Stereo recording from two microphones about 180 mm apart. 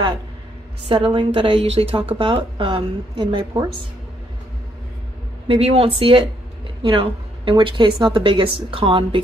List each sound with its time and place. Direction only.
0.8 s a woman's voice: 30° right (ahead or behind)
5.5 s a woman's voice: 30° right (ahead or behind)